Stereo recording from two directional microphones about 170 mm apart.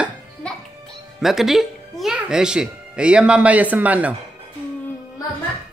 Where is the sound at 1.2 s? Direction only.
Centre (ahead or behind).